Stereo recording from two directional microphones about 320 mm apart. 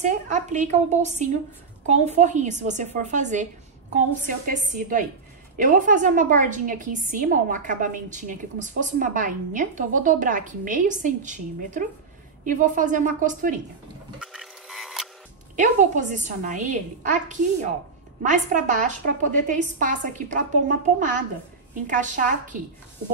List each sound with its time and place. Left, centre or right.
0.0 s a woman's voice: right
14.2 s a sound: centre
15.5 s a woman's voice: right